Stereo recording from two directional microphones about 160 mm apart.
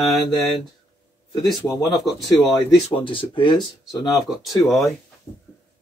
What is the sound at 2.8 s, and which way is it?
Speech, 35° left (ahead or behind).